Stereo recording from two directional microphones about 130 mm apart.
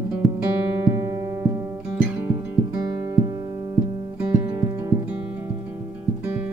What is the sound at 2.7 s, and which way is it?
Music, 30° right (ahead or behind).